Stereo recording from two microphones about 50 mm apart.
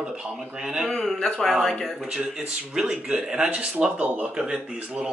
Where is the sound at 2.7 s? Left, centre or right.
Centre.